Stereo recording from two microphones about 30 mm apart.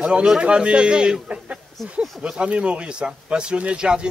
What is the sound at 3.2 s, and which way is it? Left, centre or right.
Speech, right.